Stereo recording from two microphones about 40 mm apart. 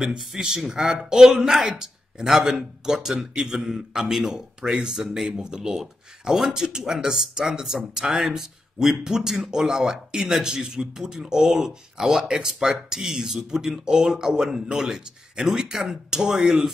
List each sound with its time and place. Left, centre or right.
0.4 s speech: centre